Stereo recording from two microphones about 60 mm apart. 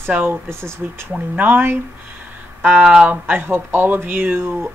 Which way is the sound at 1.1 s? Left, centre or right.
Right.